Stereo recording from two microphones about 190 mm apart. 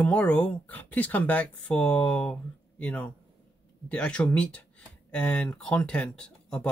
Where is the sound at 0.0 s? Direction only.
5° left (ahead or behind).